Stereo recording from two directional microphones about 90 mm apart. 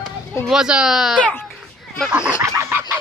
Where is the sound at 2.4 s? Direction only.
30° right (ahead or behind).